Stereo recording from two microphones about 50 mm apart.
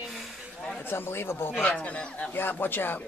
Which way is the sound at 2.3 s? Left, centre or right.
Left.